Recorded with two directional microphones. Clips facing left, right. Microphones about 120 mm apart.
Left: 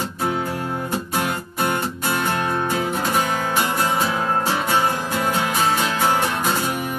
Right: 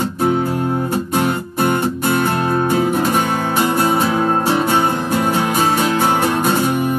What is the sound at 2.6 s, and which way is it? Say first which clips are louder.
Music: right 7 dB; 30° right (ahead or behind).